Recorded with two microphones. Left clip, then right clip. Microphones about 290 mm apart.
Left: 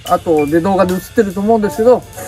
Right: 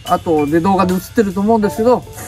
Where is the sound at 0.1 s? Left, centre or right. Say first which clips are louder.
Left 2 dB; right.